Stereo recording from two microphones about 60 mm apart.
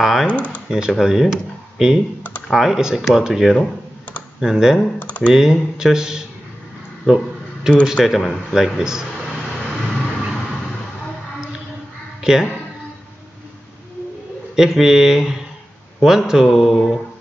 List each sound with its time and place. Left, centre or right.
0.0 s speech: centre
0.3 s speech: left
0.7 s speech: centre
4.9 s speech: left
5.3 s speech: centre
7.8 s speech: centre
9.8 s vehicle: centre
12.2 s speech: centre
14.5 s speech: centre
16.4 s a sound: centre